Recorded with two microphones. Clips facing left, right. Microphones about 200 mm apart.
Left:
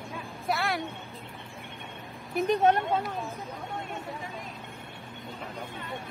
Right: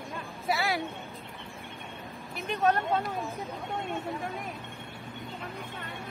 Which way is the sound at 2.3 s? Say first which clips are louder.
Left 4 dB; 30° left (ahead or behind).